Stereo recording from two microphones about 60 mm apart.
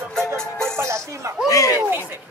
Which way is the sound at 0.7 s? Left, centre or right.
Right.